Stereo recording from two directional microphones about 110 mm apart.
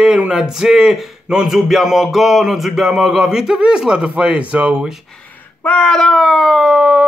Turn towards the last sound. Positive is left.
turn(degrees=-10)  # may be behind; listen again after turning